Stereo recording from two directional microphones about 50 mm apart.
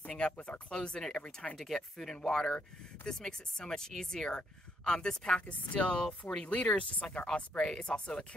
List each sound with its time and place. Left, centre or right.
0.1 s speech: left
1.6 s speech: centre
5.4 s speech: left